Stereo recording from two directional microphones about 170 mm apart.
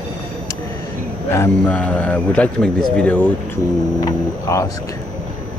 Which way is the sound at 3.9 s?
20° left (ahead or behind).